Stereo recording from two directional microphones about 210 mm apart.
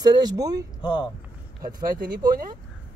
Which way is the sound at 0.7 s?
20° left (ahead or behind).